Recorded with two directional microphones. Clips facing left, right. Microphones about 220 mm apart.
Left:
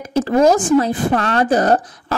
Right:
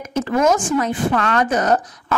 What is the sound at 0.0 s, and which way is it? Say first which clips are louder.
A woman's voice: left 4 dB; 35° left (ahead or behind).